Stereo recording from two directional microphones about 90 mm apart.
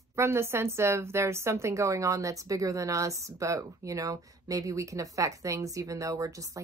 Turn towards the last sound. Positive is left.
turn(degrees=-40)  # may be behind; listen again after turning